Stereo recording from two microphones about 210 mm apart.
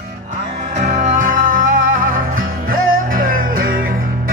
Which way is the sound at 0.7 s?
35° right (ahead or behind).